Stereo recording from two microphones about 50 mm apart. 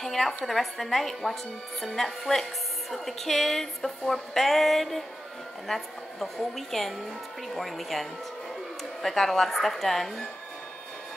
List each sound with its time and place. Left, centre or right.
0.0 s a woman's voice: centre